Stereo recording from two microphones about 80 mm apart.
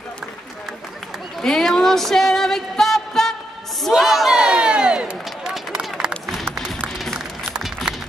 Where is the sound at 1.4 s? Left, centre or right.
Centre.